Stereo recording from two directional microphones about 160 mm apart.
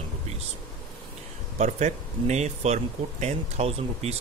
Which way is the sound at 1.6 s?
45° right (ahead or behind).